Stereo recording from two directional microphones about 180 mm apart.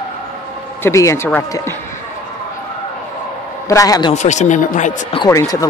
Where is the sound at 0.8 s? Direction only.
15° left (ahead or behind).